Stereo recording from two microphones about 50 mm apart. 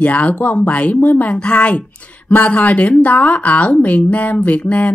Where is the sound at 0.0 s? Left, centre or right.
Left.